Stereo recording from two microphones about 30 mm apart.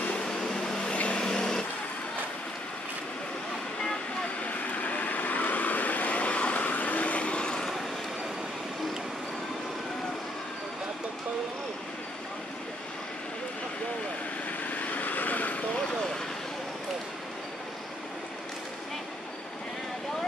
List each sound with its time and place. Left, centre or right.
0.2 s vehicle: left
0.9 s vehicle: left
1.2 s vehicle: left
4.4 s vehicle: left
14.7 s vehicle: left